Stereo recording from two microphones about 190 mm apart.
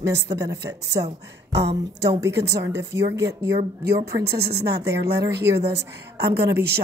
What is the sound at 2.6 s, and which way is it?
Speech, 15° right (ahead or behind).